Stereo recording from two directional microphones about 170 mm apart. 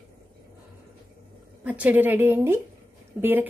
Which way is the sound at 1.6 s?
10° right (ahead or behind).